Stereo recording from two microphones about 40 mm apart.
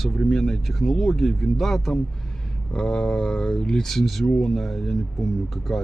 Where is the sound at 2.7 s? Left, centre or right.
Left.